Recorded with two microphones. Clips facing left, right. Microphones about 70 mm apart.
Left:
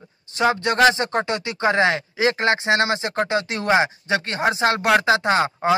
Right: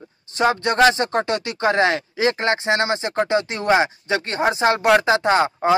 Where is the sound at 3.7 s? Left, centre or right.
Centre.